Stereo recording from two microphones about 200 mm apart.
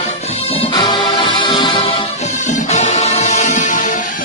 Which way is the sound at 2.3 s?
40° left (ahead or behind).